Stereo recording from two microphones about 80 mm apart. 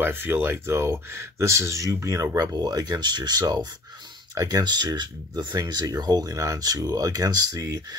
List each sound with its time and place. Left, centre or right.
0.0 s speech: right